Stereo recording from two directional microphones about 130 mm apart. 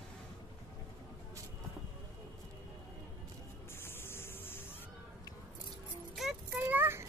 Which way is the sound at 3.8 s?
20° left (ahead or behind).